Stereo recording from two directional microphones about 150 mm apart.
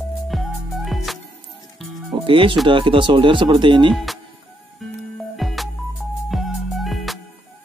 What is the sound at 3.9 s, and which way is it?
Music, centre (ahead or behind).